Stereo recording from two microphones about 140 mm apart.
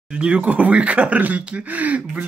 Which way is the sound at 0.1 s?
10° right (ahead or behind).